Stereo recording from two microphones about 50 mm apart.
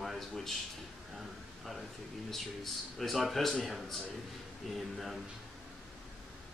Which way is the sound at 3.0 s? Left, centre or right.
Centre.